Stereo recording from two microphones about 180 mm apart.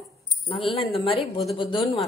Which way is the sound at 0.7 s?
30° left (ahead or behind).